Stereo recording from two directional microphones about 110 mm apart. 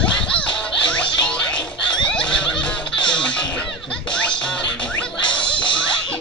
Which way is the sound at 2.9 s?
10° left (ahead or behind).